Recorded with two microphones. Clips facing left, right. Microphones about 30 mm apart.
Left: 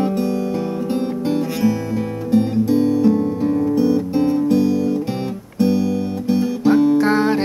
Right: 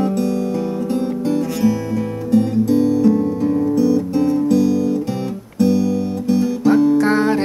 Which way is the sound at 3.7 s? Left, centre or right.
Left.